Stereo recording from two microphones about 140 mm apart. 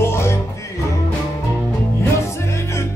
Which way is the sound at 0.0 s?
20° left (ahead or behind).